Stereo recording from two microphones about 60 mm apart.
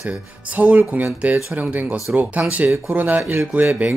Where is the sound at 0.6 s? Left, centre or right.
Right.